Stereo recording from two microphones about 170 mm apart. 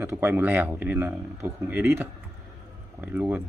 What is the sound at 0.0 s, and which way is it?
Speech, 15° right (ahead or behind).